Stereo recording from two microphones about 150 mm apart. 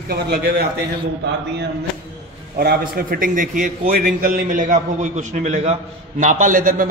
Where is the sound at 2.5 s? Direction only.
85° right; by 3.7 s 60° right (ahead or behind).